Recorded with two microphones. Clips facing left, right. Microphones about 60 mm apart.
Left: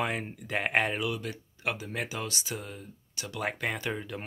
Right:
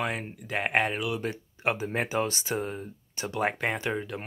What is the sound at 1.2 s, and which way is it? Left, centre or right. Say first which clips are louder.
Speech: right 5 dB; right.